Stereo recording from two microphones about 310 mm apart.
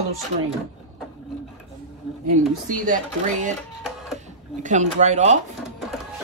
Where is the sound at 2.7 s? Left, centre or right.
Right.